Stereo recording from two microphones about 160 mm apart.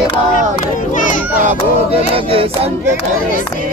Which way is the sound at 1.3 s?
50° right (ahead or behind).